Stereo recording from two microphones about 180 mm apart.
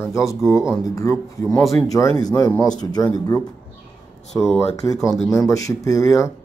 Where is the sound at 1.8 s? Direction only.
20° left (ahead or behind).